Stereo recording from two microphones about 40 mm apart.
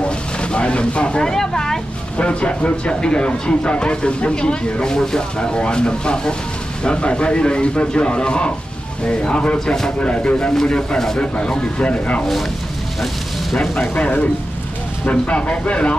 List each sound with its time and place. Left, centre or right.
0.0 s a sound: left
1.2 s speech: centre
2.1 s speech: left
10.5 s speech: centre; by 12.3 s left
13.9 s speech: left